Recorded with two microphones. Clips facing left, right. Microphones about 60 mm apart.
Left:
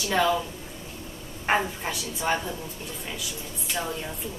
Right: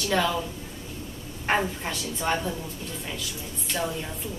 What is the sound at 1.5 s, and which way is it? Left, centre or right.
Speech, centre.